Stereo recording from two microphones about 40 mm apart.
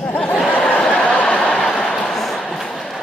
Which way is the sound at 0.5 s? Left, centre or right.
Left.